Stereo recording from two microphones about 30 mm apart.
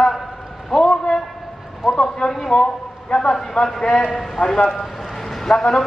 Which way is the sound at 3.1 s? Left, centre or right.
Left.